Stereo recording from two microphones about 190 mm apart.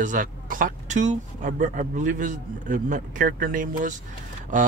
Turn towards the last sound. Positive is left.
turn(degrees=-40)  # may be behind; listen again after turning